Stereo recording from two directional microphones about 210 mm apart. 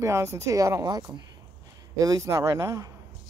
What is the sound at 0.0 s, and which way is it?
Speech, 15° right (ahead or behind).